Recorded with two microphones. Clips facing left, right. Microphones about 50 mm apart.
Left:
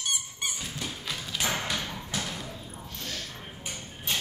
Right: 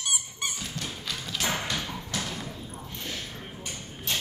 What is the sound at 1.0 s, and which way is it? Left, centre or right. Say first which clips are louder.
Music: right 1 dB; centre.